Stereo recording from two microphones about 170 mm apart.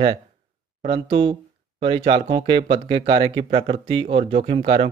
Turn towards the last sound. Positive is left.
turn(degrees=-40)  # may be behind; listen again after turning